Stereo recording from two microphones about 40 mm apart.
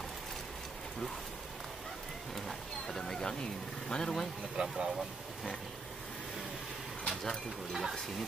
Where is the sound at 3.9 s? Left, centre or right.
Centre.